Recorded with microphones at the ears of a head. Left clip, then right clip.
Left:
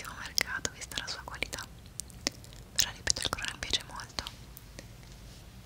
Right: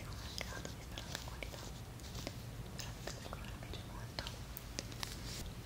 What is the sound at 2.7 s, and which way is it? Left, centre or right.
Whispering, left.